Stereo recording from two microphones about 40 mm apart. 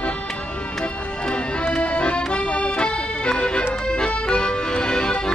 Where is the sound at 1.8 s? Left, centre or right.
Left.